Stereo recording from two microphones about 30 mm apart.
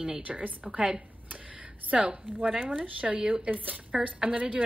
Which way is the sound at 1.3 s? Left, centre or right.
Right.